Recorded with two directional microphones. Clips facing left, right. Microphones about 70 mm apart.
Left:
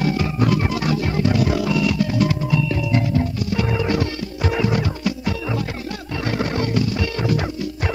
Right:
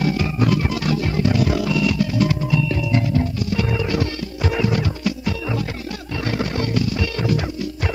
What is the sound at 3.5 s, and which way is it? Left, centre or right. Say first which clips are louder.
Music: left 2 dB; left.